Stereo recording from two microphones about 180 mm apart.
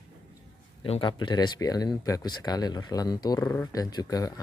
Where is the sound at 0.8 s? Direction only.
30° left (ahead or behind).